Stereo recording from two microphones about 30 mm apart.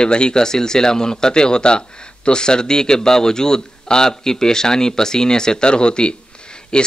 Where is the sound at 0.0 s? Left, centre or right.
Left.